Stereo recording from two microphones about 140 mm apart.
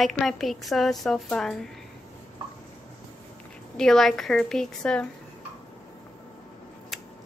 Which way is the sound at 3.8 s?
5° left (ahead or behind).